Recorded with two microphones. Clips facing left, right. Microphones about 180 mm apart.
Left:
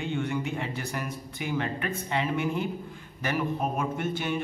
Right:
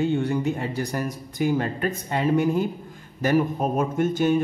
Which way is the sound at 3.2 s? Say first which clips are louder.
Right 7 dB; 40° right (ahead or behind).